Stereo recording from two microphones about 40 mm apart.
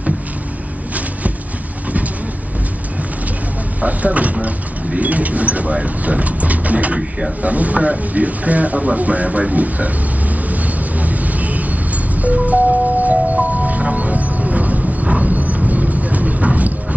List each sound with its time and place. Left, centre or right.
3.8 s speech: right
10.5 s vehicle: right
12.2 s music: right
15.0 s vehicle: right